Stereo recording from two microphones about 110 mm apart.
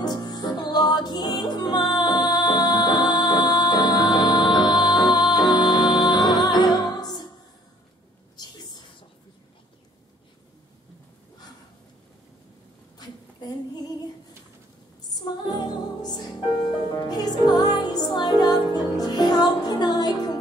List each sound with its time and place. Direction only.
0.0 s music: 40° left (ahead or behind)
8.4 s a sound: 40° left (ahead or behind)
13.0 s female singing: 40° left (ahead or behind)
15.1 s music: 40° left (ahead or behind)